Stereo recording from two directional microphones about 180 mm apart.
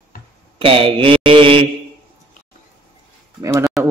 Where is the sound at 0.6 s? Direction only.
30° right (ahead or behind).